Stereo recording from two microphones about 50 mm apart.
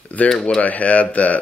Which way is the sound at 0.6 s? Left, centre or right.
Left.